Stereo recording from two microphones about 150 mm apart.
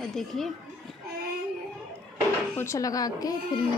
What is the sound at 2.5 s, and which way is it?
Speech, 20° left (ahead or behind).